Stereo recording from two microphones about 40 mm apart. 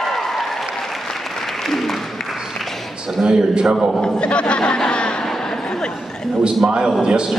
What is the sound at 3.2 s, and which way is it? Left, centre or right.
Speech, centre.